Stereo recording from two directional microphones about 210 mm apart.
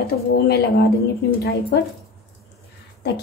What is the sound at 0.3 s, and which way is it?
A woman's voice, 50° left (ahead or behind).